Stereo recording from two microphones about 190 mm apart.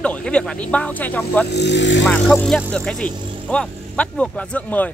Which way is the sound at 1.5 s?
65° left (ahead or behind).